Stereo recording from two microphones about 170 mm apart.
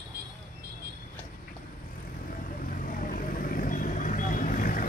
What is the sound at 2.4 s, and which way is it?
Vehicle, 55° left (ahead or behind).